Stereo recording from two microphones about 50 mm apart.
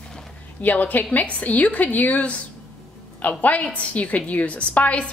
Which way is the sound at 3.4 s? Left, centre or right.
Left.